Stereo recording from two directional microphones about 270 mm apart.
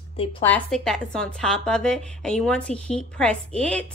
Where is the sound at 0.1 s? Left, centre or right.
Centre.